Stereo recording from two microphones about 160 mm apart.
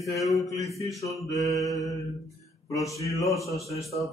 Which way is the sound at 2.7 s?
20° left (ahead or behind).